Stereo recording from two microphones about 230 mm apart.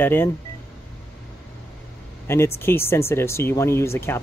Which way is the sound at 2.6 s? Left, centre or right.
Centre.